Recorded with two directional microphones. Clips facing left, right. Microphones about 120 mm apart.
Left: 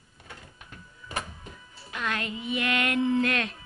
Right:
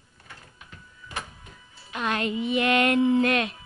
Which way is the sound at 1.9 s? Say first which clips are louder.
Right 5 dB; 25° right (ahead or behind).